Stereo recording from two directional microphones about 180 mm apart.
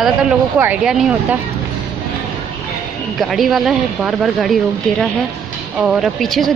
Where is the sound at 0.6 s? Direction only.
5° right (ahead or behind).